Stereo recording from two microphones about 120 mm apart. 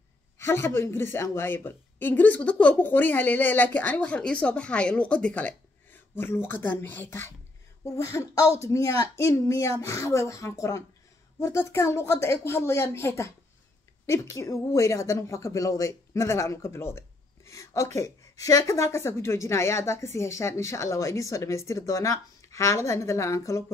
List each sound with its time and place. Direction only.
0.4 s a woman's voice: 20° left (ahead or behind)